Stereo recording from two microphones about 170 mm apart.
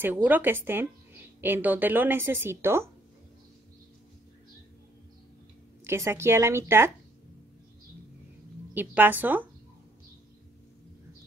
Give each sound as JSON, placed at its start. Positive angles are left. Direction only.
{"t": 0.0, "sound": "a woman's voice", "side_deg": -10}
{"t": 5.9, "sound": "a woman's voice", "side_deg": -15}
{"t": 8.7, "sound": "a woman's voice", "side_deg": -10}